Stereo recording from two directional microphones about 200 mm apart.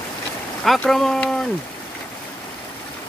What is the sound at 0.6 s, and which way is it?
Speech, centre (ahead or behind).